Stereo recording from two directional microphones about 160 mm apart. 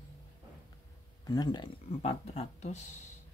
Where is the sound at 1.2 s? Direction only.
25° left (ahead or behind).